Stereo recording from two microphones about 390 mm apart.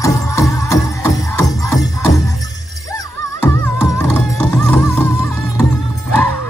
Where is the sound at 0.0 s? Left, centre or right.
Centre.